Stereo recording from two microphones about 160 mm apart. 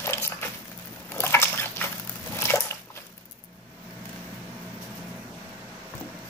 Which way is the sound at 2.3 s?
15° left (ahead or behind).